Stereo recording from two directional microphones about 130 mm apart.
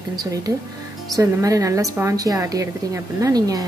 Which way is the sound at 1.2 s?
25° right (ahead or behind).